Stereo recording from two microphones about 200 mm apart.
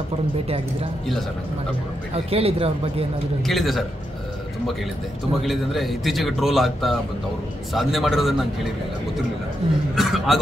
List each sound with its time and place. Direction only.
2.1 s speech: 30° right (ahead or behind)
3.4 s speech: centre (ahead or behind)
5.4 s speech: centre (ahead or behind)
9.9 s speech: centre (ahead or behind)